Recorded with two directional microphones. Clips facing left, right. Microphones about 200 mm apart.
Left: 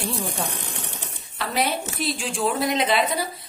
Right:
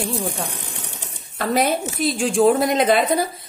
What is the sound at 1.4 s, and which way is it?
A woman's voice, 45° right (ahead or behind).